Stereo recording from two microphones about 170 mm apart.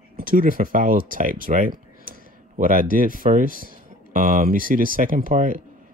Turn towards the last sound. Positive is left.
turn(degrees=-50)  # may be behind; listen again after turning